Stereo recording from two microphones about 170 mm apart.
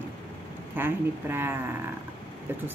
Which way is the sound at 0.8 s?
10° right (ahead or behind).